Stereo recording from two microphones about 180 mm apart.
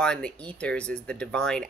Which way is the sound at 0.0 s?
5° left (ahead or behind).